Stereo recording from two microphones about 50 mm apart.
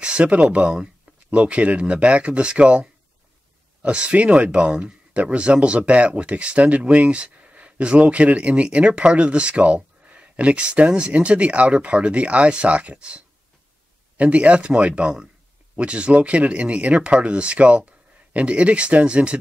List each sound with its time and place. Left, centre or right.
0.0 s speech: right